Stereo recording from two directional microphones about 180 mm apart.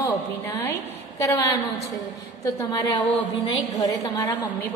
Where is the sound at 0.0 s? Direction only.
20° left (ahead or behind).